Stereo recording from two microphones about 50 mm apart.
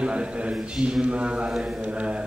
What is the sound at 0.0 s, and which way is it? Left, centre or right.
A man's voice, right.